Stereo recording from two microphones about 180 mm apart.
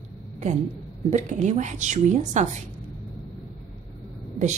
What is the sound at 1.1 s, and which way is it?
A woman's voice, 40° right (ahead or behind).